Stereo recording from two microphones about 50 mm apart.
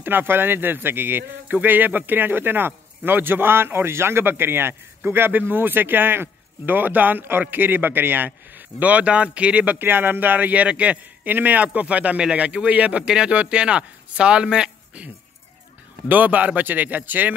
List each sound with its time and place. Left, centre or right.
0.0 s a man's voice: right
9.8 s a man's voice: right
13.0 s a man's voice: centre
16.1 s a man's voice: right